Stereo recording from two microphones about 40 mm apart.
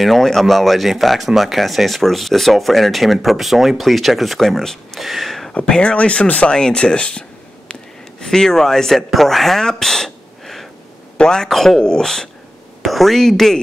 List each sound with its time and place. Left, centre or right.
0.0 s speech: centre
5.8 s speech: left
6.6 s a sound: centre
8.2 s speech: centre
11.1 s speech: centre
11.4 s speech: centre
12.8 s speech: centre